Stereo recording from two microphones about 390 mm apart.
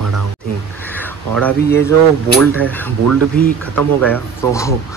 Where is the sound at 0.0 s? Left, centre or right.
Right.